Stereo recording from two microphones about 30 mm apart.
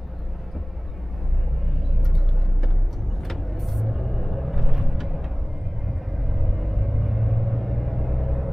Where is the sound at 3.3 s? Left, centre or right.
Centre.